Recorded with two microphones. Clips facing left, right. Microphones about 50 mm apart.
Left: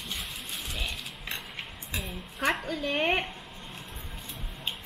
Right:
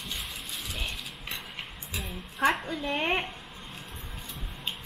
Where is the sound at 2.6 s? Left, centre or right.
Centre.